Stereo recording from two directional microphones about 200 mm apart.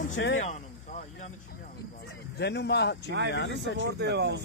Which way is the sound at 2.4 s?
55° left (ahead or behind).